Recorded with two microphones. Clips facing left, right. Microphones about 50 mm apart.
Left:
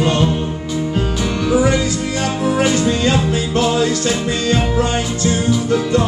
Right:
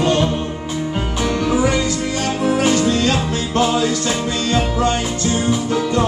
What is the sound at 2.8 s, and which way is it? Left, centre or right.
Music, centre.